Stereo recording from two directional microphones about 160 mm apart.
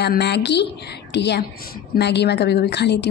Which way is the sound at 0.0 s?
90° left.